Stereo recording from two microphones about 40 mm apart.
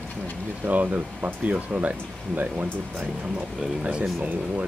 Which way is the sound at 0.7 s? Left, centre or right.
Right.